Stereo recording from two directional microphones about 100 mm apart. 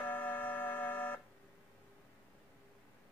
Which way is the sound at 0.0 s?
20° left (ahead or behind).